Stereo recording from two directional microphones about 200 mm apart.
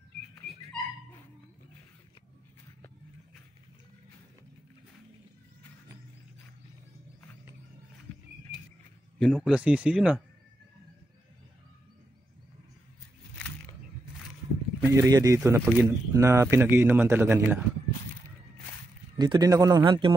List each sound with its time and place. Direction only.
9.2 s speech: centre (ahead or behind)
14.8 s speech: 15° right (ahead or behind)
19.1 s speech: 20° right (ahead or behind)